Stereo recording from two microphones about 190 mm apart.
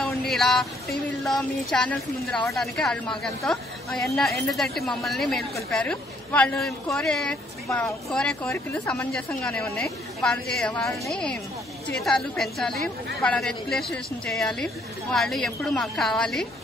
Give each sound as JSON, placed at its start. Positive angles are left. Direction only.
{"t": 0.3, "sound": "a woman's voice", "side_deg": 0}